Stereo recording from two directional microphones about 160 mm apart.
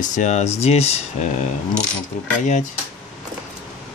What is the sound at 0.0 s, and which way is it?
Speech, 50° left (ahead or behind).